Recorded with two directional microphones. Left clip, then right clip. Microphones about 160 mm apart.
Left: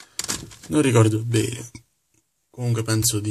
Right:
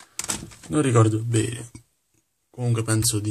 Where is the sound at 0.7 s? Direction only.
20° left (ahead or behind).